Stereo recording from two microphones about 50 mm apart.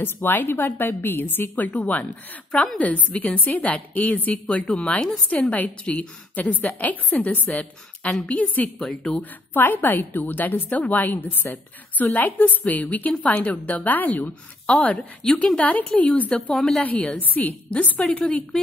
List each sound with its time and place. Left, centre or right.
0.0 s a woman's voice: left
8.7 s speech: centre
9.5 s a woman's voice: left
10.7 s a woman's voice: left
16.4 s speech: centre
16.8 s a woman's voice: left
18.2 s speech: centre